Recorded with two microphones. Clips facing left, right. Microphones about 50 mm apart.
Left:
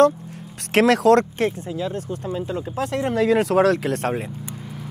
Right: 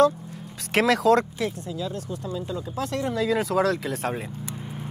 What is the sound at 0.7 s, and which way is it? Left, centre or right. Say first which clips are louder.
Speech: left 4 dB; left.